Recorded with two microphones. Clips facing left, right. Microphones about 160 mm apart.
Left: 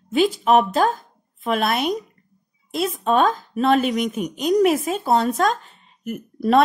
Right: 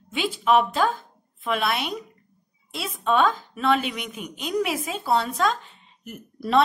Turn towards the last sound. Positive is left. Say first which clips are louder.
# left 7 dB
turn(degrees=50)  # may be behind; listen again after turning